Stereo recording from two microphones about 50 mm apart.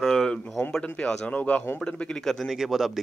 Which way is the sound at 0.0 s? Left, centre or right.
Centre.